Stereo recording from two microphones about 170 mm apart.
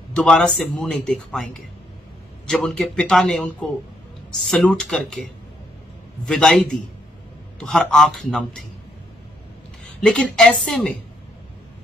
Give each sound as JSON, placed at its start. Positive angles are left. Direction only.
{"t": 0.1, "sound": "a man's voice", "side_deg": 5}
{"t": 4.5, "sound": "a man's voice", "side_deg": 0}
{"t": 6.2, "sound": "a man's voice", "side_deg": 5}
{"t": 10.0, "sound": "a man's voice", "side_deg": 5}